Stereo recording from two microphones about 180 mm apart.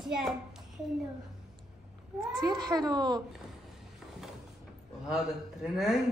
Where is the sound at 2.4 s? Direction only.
25° right (ahead or behind).